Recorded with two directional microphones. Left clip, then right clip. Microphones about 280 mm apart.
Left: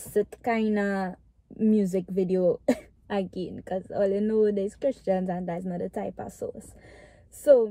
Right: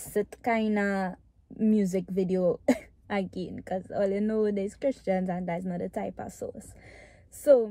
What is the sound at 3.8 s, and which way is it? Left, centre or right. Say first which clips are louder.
A woman's voice: left 3 dB; centre.